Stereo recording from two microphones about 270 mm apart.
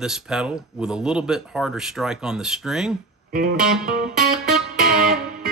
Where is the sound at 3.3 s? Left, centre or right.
Right.